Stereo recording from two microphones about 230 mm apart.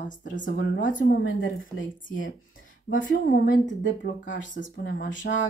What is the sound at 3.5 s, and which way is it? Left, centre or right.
Speech, left.